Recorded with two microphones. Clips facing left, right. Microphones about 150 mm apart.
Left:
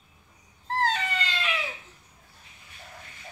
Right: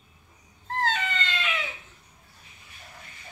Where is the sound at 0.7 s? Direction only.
35° left (ahead or behind).